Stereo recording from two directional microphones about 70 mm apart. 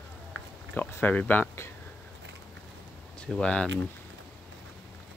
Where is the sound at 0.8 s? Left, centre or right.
Left.